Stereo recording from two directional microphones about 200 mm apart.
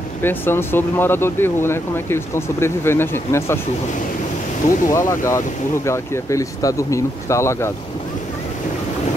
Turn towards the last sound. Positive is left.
turn(degrees=15)  # may be behind; listen again after turning